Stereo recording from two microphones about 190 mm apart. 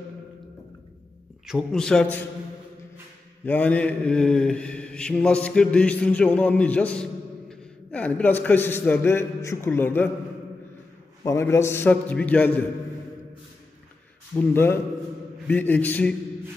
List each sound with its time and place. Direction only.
1.4 s a man's voice: centre (ahead or behind)
3.4 s mantra: 10° left (ahead or behind)
11.2 s mantra: 15° left (ahead or behind)
14.5 s mantra: 10° left (ahead or behind)